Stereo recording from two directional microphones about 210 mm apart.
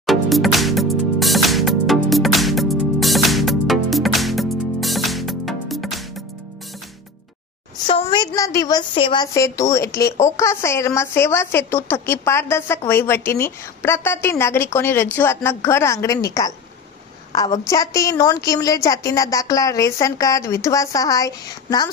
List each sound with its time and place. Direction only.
0.0 s music: centre (ahead or behind)
7.9 s a sound: 20° left (ahead or behind)
8.4 s a woman's voice: 15° left (ahead or behind)